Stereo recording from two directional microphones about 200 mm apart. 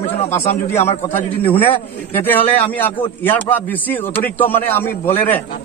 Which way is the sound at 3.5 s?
10° left (ahead or behind).